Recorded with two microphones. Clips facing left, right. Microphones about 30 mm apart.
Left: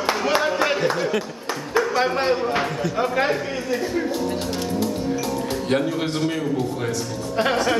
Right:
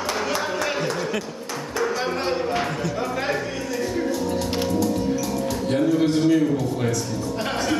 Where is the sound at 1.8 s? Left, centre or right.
Centre.